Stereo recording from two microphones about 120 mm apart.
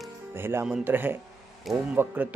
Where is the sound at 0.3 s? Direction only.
20° right (ahead or behind).